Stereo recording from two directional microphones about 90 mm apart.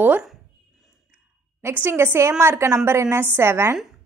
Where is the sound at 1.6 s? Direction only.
25° right (ahead or behind).